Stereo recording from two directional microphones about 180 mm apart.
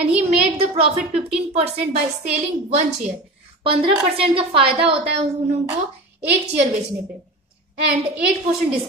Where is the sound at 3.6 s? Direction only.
30° right (ahead or behind).